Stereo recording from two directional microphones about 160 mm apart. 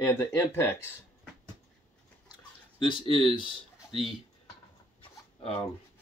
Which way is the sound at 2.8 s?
30° left (ahead or behind).